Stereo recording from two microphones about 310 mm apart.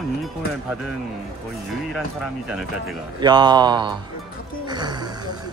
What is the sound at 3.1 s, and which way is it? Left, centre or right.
Speech, centre.